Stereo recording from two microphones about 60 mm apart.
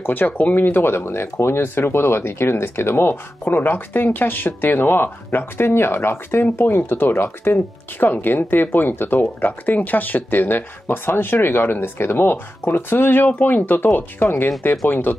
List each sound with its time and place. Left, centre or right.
0.0 s speech: left